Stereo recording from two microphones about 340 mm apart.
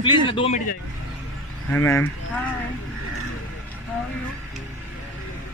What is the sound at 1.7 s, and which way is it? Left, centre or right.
Speech, centre.